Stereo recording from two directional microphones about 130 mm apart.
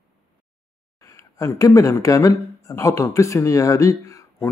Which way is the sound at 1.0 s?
25° left (ahead or behind).